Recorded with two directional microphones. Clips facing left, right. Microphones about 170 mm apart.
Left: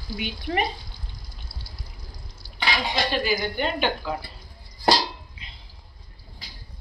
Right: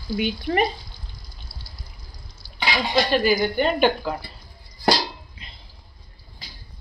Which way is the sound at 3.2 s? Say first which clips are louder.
Right 5 dB; 50° right (ahead or behind).